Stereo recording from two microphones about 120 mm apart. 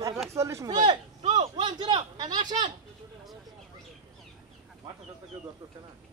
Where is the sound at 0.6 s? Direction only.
35° right (ahead or behind).